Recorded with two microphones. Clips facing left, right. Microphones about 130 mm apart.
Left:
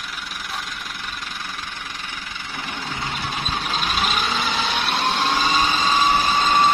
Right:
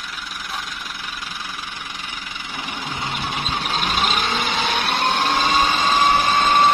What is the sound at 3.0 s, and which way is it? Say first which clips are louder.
Vehicle: right 2 dB; 15° right (ahead or behind).